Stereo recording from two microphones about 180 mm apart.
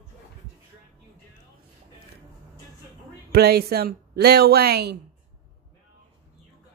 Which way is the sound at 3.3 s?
60° right (ahead or behind).